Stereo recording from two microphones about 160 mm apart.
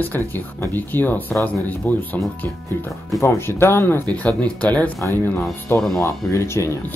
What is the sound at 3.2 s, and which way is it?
Speech, 15° left (ahead or behind).